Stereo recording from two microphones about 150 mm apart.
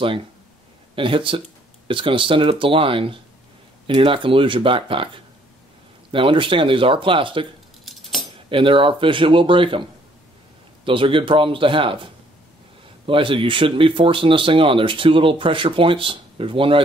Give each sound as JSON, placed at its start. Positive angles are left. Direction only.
{"t": 0.9, "sound": "speech", "side_deg": -35}
{"t": 7.8, "sound": "cutlery", "side_deg": 0}
{"t": 8.5, "sound": "speech", "side_deg": -35}
{"t": 10.9, "sound": "speech", "side_deg": -35}